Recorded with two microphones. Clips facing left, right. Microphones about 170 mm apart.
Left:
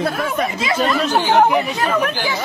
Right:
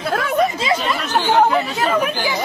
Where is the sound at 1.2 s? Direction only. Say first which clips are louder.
Even; 15° left (ahead or behind).